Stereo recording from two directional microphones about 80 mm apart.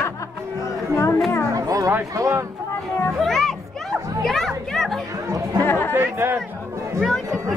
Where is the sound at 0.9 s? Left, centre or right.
Left.